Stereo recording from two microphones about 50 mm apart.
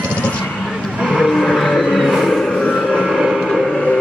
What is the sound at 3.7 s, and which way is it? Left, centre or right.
Vehicle, centre.